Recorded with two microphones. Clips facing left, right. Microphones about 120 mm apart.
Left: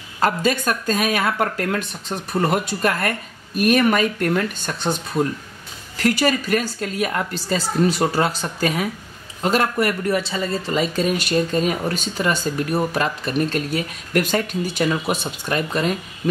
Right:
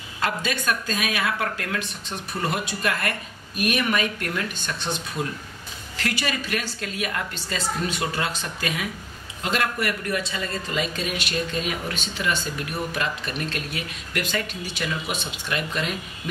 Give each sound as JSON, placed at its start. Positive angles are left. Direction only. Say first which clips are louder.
{"t": 0.2, "sound": "speech", "louder": "left 7 dB", "side_deg": 40}